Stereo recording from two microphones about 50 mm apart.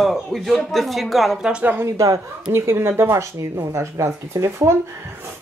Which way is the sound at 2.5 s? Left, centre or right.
Right.